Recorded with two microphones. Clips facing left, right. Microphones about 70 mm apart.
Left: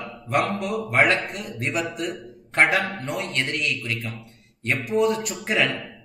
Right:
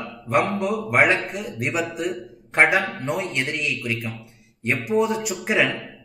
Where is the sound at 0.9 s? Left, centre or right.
Centre.